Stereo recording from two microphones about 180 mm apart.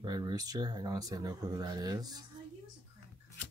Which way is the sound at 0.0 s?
20° right (ahead or behind).